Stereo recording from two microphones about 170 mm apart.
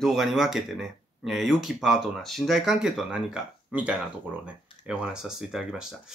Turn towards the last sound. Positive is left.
turn(degrees=0)  # may be behind; listen again after turning